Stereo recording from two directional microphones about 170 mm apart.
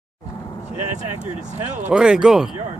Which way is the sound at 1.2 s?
5° right (ahead or behind).